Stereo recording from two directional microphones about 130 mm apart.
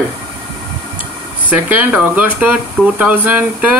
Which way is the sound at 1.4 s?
10° right (ahead or behind).